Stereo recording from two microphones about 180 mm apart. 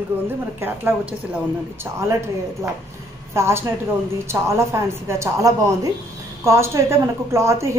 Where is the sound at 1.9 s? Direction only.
15° right (ahead or behind).